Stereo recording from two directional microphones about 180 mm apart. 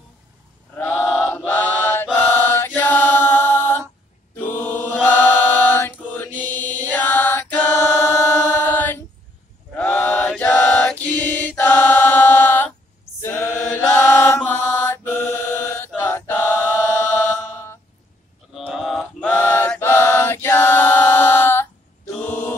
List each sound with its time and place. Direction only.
0.7 s chant: 10° left (ahead or behind)
2.1 s mantra: 10° left (ahead or behind)
9.8 s chant: 10° left (ahead or behind)
13.2 s a capella: 15° left (ahead or behind)
13.7 s chant: 10° left (ahead or behind)
18.7 s chant: centre (ahead or behind)
22.2 s mantra: 10° left (ahead or behind)